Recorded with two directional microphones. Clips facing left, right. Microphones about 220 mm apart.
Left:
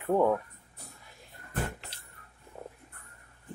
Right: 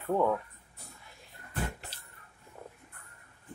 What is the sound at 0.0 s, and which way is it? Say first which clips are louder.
Speech: left 3 dB; 20° left (ahead or behind).